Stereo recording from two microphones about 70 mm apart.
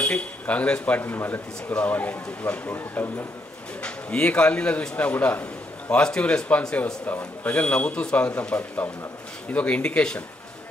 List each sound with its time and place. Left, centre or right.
0.0 s speech: centre
3.8 s a man's voice: centre